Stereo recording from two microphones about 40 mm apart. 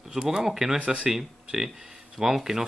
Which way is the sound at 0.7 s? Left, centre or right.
Right.